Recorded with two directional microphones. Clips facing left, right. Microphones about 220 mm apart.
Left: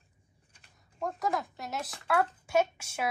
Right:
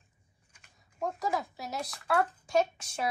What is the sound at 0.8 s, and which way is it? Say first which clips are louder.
A woman's voice: even; centre (ahead or behind).